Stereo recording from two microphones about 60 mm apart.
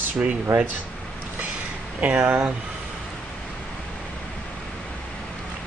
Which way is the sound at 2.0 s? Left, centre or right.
Centre.